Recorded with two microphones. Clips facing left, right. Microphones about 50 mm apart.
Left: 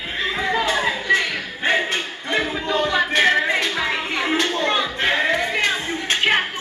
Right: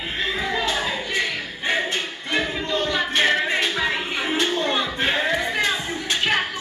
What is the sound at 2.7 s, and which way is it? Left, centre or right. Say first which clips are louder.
Music: left 4 dB; centre.